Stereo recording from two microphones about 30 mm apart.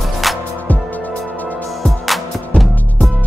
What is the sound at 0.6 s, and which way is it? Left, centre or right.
Music, left.